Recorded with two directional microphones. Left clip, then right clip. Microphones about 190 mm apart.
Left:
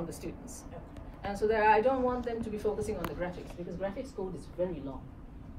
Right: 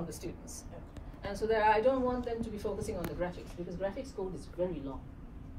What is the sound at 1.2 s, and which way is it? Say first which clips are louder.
Speech: left 2 dB; 5° left (ahead or behind).